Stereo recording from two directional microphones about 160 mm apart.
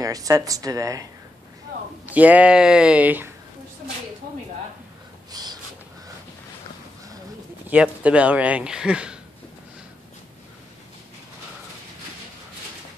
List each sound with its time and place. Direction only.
0.0 s speech: 20° right (ahead or behind)
2.0 s speech: 10° right (ahead or behind)
5.3 s a sound: 25° right (ahead or behind)
7.7 s speech: 5° right (ahead or behind)